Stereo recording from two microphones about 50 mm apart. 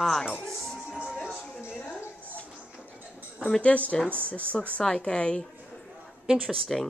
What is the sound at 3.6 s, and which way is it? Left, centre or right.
Speech, left.